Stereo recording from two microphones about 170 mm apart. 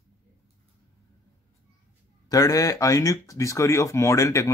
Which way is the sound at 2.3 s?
20° left (ahead or behind).